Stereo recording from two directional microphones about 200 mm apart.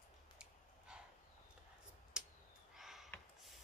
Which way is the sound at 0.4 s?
5° right (ahead or behind).